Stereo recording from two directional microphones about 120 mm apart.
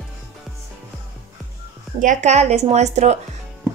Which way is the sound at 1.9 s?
80° right.